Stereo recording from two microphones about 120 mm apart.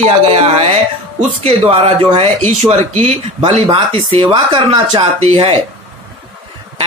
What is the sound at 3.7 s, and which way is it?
Speech, 50° right (ahead or behind).